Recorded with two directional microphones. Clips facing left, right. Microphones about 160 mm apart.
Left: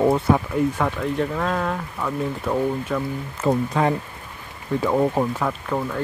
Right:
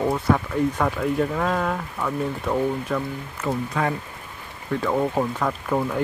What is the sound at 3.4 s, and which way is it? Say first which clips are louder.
Speech: left 5 dB; 30° left (ahead or behind).